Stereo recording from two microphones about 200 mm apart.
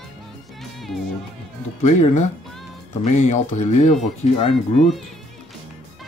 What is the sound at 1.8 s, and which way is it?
Speech, 35° left (ahead or behind).